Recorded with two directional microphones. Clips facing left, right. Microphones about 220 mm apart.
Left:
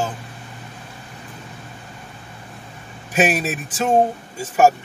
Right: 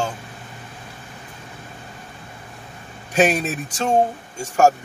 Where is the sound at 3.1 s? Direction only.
5° left (ahead or behind).